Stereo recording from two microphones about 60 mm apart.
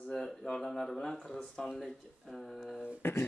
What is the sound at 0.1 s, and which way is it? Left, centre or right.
Speech, centre.